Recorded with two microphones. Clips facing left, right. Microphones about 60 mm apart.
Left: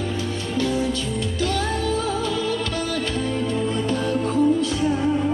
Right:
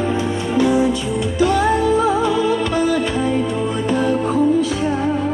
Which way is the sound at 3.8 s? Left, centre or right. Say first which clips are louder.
Right 5 dB; centre.